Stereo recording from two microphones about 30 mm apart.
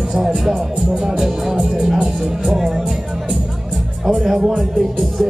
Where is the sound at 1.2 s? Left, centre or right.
Centre.